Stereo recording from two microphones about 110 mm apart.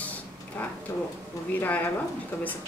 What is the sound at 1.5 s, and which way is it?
Speech, 15° left (ahead or behind).